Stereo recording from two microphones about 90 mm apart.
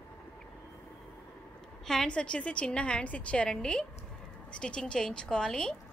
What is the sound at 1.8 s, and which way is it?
A woman's voice, 10° left (ahead or behind).